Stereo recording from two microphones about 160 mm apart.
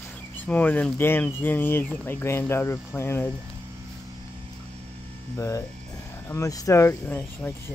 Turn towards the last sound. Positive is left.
turn(degrees=10)  # may be behind; listen again after turning